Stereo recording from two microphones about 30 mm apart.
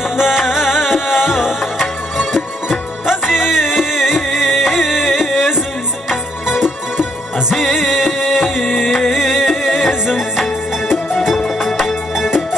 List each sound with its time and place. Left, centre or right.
0.2 s music: centre
11.6 s music: centre